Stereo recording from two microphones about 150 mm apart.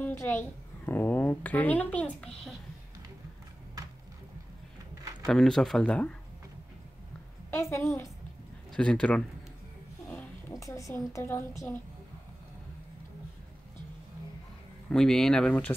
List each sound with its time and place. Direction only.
0.0 s a child's voice: 15° left (ahead or behind)
5.2 s speech: 5° left (ahead or behind)
7.5 s a woman's voice: 15° left (ahead or behind)
8.7 s a woman's voice: 5° left (ahead or behind)
10.5 s a woman's voice: 20° left (ahead or behind)
14.9 s speech: 5° left (ahead or behind)